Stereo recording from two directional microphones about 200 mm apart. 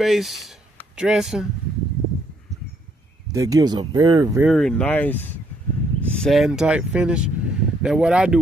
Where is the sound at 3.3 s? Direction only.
15° right (ahead or behind).